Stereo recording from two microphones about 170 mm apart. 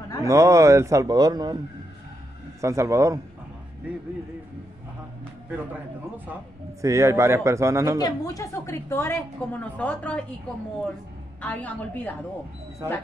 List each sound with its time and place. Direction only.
0.2 s a man's voice: 20° right (ahead or behind)
2.6 s speech: 15° right (ahead or behind)
5.5 s speech: 10° right (ahead or behind)
8.0 s a woman's voice: 20° left (ahead or behind)
11.4 s a woman's voice: 10° left (ahead or behind)